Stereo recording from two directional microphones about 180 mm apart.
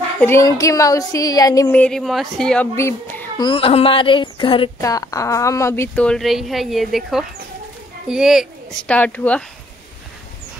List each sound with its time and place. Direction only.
0.2 s speech: 15° left (ahead or behind)
1.7 s speech: 5° left (ahead or behind)
2.7 s a woman's voice: 15° left (ahead or behind); by 8.5 s 5° right (ahead or behind)
8.8 s a woman's voice: 10° left (ahead or behind)